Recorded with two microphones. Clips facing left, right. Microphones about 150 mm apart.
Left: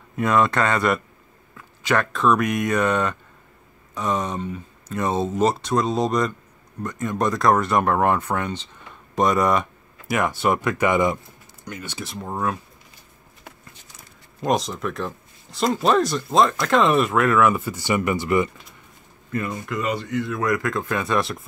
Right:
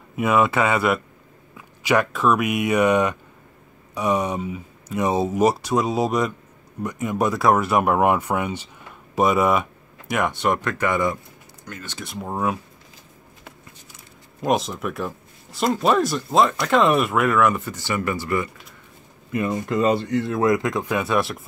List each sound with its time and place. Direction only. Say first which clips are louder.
0.1 s speech: right 1 dB; 10° right (ahead or behind); by 12.0 s 15° left (ahead or behind)
12.0 s speech: right 2 dB; 5° right (ahead or behind)
14.4 s speech: right 1 dB; 5° right (ahead or behind); by 18.5 s 20° left (ahead or behind)
19.3 s speech: right 4 dB; 25° right (ahead or behind); by 21.4 s 5° right (ahead or behind)